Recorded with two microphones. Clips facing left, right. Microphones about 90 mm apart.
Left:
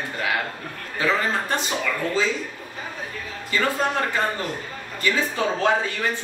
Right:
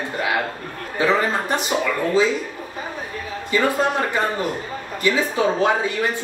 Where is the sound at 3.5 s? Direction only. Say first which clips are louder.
Right 3 dB; 15° right (ahead or behind).